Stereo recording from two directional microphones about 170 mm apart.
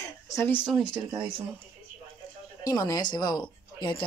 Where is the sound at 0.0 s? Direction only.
15° left (ahead or behind).